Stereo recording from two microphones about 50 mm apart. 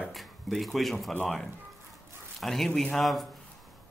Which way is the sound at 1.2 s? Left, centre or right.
Centre.